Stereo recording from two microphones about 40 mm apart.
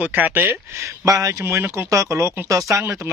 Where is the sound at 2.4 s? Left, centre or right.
Right.